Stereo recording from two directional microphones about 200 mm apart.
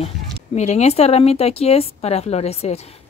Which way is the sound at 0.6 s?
35° left (ahead or behind).